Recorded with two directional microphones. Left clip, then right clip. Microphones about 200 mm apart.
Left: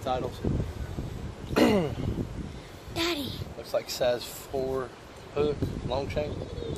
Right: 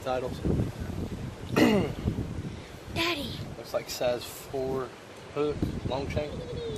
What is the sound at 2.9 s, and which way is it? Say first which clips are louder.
Speech: even; 55° left (ahead or behind).